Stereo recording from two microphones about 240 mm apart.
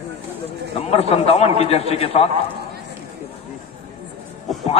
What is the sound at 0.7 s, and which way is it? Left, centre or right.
Speech, left.